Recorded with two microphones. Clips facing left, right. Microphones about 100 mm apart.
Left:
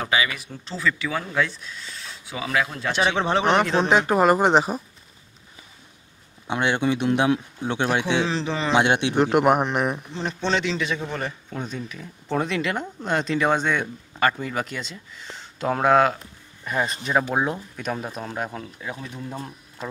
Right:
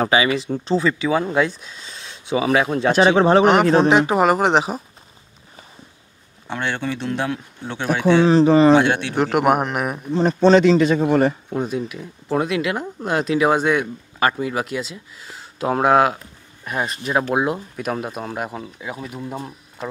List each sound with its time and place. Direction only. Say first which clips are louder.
0.1 s speech: right 7 dB; 30° right (ahead or behind)
3.1 s speech: right 7 dB; 45° right (ahead or behind)
3.9 s speech: right 2 dB; 5° right (ahead or behind)
6.4 s speech: left 2 dB; 15° left (ahead or behind)
8.0 s speech: right 10 dB; 45° right (ahead or behind)
8.7 s a man's voice: right 3 dB; 20° left (ahead or behind)
9.1 s speech: right 1 dB; 5° right (ahead or behind)
10.1 s a man's voice: right 16 dB; 40° right (ahead or behind)
11.6 s speech: right 7 dB; 10° right (ahead or behind)